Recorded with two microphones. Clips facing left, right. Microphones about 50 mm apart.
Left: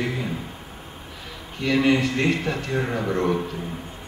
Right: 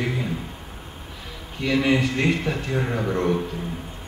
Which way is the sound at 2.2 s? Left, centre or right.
Centre.